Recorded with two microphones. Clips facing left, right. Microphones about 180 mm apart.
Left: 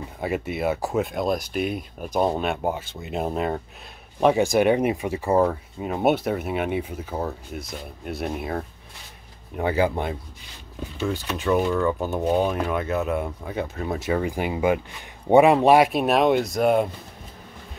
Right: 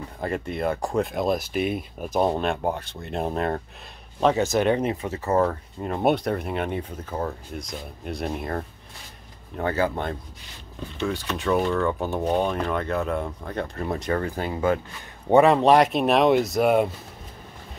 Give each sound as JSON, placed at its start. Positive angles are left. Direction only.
{"t": 0.2, "sound": "speech", "side_deg": 5}
{"t": 11.0, "sound": "speech", "side_deg": 0}